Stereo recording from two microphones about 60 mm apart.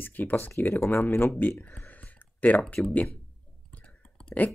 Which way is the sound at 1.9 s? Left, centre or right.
Left.